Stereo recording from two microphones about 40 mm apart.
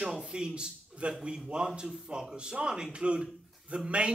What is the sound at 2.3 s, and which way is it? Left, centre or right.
Speech, right.